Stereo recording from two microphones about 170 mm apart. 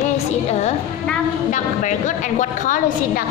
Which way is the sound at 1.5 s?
45° left (ahead or behind).